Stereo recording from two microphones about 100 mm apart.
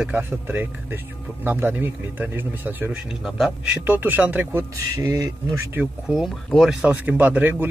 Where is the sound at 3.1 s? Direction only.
Centre (ahead or behind).